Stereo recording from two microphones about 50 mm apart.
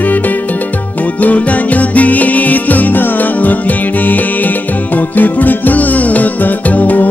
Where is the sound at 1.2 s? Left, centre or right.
Left.